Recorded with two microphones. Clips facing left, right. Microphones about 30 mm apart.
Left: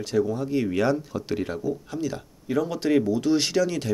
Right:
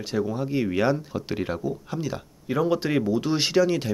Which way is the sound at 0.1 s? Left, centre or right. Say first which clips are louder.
Left 2 dB; centre.